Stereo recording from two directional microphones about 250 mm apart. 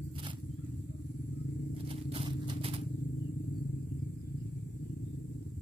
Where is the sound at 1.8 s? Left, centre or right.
Right.